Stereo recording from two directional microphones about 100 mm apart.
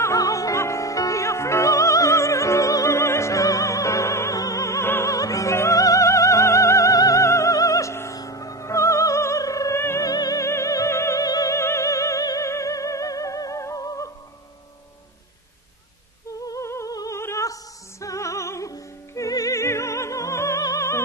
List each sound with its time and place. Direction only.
0.0 s music: 35° left (ahead or behind)
10.0 s music: 35° left (ahead or behind)
16.3 s humming: 35° left (ahead or behind)
17.2 s music: 30° left (ahead or behind)